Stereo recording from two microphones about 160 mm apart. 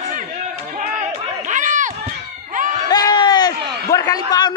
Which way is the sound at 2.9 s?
25° left (ahead or behind).